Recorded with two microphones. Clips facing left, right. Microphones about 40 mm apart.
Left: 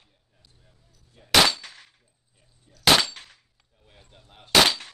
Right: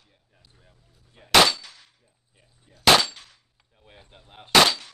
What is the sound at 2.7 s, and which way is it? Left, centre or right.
Speech, right.